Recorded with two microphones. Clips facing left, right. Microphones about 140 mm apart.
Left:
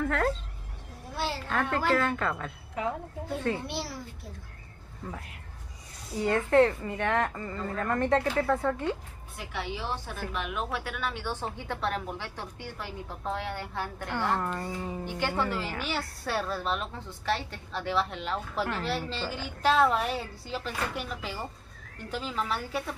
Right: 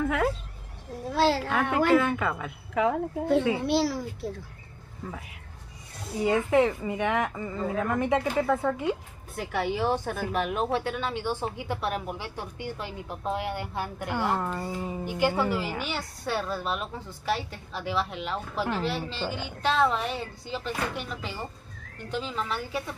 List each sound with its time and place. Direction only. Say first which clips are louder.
0.0 s speech: right 2 dB; 5° right (ahead or behind)
1.0 s a woman's voice: right 10 dB; 90° right
1.5 s a woman's voice: right 5 dB; 5° right (ahead or behind)
2.7 s a child's voice: right 8 dB; 90° right
5.1 s a woman's voice: right 1 dB; centre (ahead or behind)
9.4 s a woman's voice: right 8 dB; 50° right (ahead or behind); by 22.9 s centre (ahead or behind)